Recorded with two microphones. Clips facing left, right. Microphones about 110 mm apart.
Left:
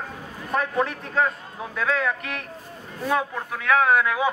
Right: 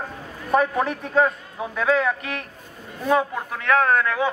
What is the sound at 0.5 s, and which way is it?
A man's voice, 5° right (ahead or behind).